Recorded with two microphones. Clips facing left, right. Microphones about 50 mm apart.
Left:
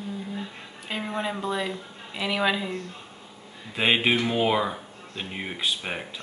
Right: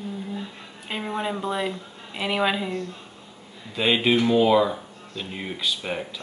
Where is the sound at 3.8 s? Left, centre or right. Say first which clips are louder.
Right 2 dB; left.